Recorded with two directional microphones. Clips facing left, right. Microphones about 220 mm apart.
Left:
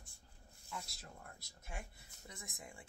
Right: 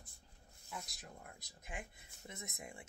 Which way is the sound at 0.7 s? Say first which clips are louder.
Even; 15° right (ahead or behind).